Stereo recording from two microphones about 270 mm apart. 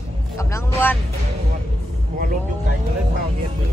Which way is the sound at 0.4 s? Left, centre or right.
Centre.